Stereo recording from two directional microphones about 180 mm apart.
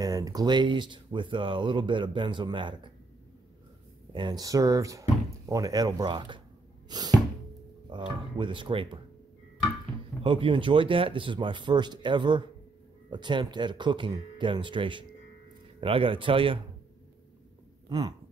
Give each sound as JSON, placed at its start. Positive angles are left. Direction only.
{"t": 0.0, "sound": "speech", "side_deg": -20}
{"t": 4.1, "sound": "speech", "side_deg": -25}
{"t": 6.9, "sound": "a sound", "side_deg": -20}
{"t": 7.9, "sound": "speech", "side_deg": -25}
{"t": 10.2, "sound": "speech", "side_deg": -30}
{"t": 17.8, "sound": "speech", "side_deg": -20}